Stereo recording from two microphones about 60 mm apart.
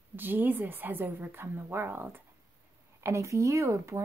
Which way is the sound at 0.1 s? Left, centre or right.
Right.